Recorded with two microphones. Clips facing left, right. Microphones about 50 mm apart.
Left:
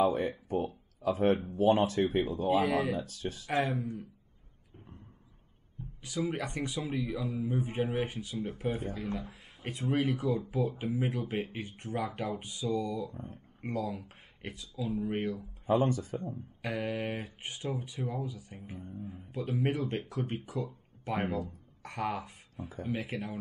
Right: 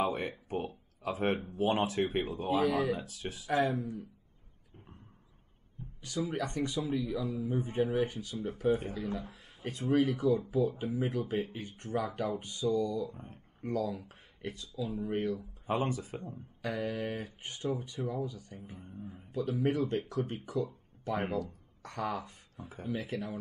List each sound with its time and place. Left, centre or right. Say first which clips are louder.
0.0 s speech: left 4 dB; right
0.5 s a sound: left 4 dB; right
1.6 s speech: left 4 dB; right
2.4 s speech: even; left
3.2 s speech: left 3 dB; right
3.4 s speech: right 2 dB; left
6.1 s speech: even; left
13.1 s speech: left 4 dB; right
13.6 s speech: right 1 dB; left
16.0 s speech: left 4 dB; right
16.6 s speech: even; left